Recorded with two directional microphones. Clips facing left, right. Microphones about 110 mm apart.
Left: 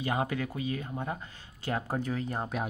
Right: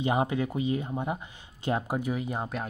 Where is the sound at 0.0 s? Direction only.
20° right (ahead or behind).